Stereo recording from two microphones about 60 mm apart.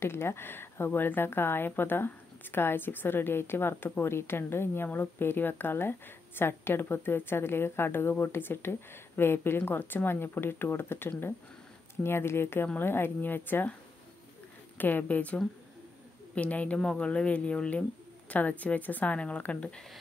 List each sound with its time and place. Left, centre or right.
0.0 s speech: left
14.8 s a woman's voice: left